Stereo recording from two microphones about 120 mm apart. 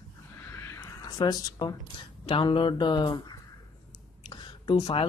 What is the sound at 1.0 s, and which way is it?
Speech, 35° left (ahead or behind).